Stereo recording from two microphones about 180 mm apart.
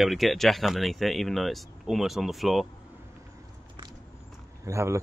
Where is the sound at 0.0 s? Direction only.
Centre (ahead or behind).